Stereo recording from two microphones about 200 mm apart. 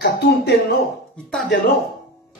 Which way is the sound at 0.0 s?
60° left (ahead or behind).